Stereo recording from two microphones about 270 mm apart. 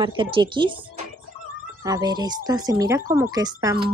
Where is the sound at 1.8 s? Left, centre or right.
Centre.